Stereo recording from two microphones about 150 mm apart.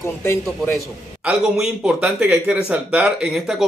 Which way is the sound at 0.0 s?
15° left (ahead or behind).